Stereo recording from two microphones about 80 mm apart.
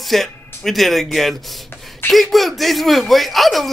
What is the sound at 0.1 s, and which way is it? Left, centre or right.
Speech, centre.